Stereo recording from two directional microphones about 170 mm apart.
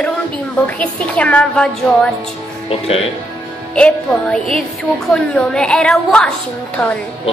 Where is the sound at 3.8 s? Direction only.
5° left (ahead or behind).